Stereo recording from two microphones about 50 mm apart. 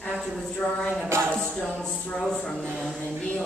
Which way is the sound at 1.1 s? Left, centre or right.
Right.